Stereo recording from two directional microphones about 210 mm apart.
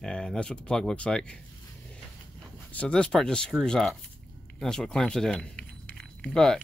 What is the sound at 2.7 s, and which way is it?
Speech, 5° left (ahead or behind).